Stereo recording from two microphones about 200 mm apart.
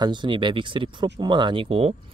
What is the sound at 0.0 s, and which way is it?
Speech, 25° right (ahead or behind).